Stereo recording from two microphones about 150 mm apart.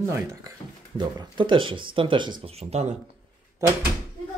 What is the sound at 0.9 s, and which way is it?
Speech, 30° right (ahead or behind).